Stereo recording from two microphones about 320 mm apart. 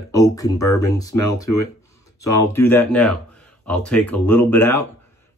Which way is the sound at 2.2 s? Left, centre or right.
Centre.